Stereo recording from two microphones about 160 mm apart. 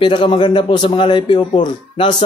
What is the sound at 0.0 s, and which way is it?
A man's voice, 30° left (ahead or behind).